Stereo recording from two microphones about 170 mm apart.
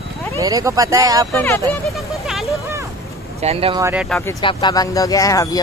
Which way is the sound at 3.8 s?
10° right (ahead or behind).